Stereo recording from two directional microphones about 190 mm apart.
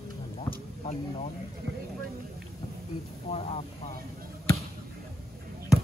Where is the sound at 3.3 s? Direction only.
30° left (ahead or behind).